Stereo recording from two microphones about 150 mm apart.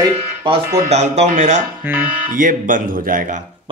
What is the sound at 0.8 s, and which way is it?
A man's voice, 50° right (ahead or behind).